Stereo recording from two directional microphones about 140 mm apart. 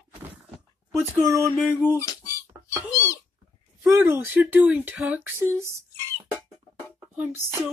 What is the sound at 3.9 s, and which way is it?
Speech, 15° right (ahead or behind).